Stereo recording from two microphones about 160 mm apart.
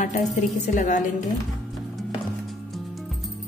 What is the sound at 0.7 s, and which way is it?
Speech, 50° left (ahead or behind).